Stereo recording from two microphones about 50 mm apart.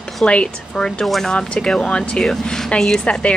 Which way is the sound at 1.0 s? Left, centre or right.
Centre.